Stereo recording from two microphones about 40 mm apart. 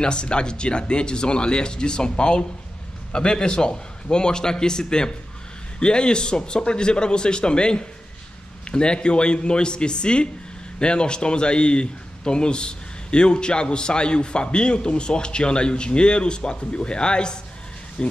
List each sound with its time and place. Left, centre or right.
0.0 s a man's voice: left